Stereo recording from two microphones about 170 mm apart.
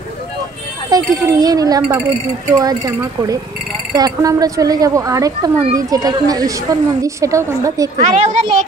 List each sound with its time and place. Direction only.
0.8 s speech: 20° right (ahead or behind)
8.0 s a child's voice: 45° right (ahead or behind)